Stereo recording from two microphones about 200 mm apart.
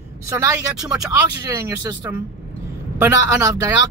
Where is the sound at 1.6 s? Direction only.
15° right (ahead or behind).